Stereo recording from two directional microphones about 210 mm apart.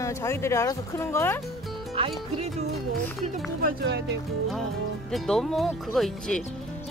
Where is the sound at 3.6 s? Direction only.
50° right (ahead or behind).